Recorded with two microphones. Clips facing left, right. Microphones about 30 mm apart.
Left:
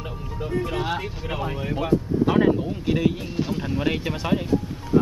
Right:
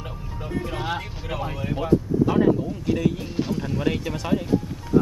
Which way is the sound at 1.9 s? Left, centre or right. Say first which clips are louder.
Right 1 dB; left.